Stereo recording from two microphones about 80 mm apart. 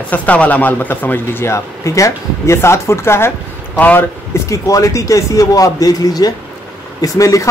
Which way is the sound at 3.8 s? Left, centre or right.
Left.